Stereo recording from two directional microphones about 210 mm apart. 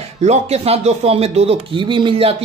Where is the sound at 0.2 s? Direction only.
30° right (ahead or behind).